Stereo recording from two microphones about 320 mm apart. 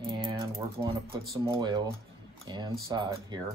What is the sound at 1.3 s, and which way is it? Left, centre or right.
Speech, centre.